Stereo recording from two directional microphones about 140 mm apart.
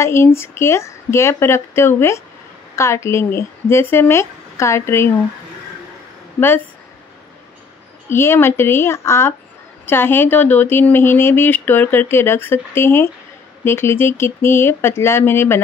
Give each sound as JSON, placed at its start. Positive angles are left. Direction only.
{"t": 0.0, "sound": "speech", "side_deg": 20}
{"t": 8.1, "sound": "speech", "side_deg": 15}